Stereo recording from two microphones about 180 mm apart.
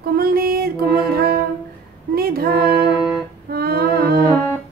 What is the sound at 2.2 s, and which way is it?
Female singing, 55° right (ahead or behind).